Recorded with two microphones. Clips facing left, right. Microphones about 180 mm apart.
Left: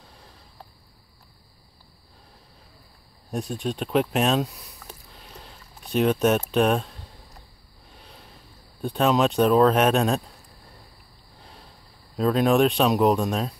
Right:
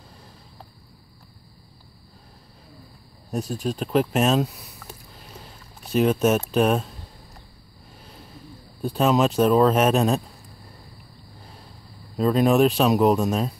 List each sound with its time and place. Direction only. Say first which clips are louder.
3.3 s speech: right 2 dB; centre (ahead or behind)
5.1 s a sound: right 2 dB; centre (ahead or behind)
8.8 s speech: right 1 dB; centre (ahead or behind)
12.2 s speech: right 1 dB; centre (ahead or behind)